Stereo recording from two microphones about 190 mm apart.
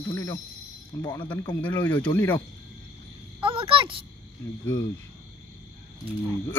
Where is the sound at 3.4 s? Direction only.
30° right (ahead or behind).